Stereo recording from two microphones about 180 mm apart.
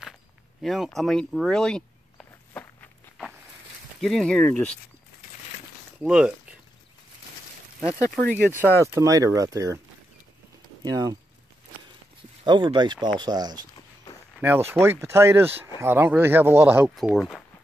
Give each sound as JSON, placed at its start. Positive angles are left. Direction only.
{"t": 0.6, "sound": "a sound", "side_deg": 0}
{"t": 4.0, "sound": "speech", "side_deg": 0}
{"t": 6.0, "sound": "speech", "side_deg": -5}
{"t": 8.3, "sound": "speech", "side_deg": -10}
{"t": 10.8, "sound": "speech", "side_deg": -20}
{"t": 12.4, "sound": "speech", "side_deg": -25}
{"t": 14.7, "sound": "speech", "side_deg": -15}